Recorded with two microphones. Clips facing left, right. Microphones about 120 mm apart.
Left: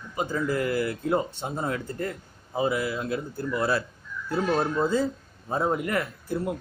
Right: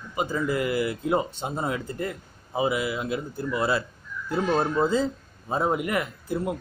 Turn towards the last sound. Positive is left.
turn(degrees=-20)  # may be behind; listen again after turning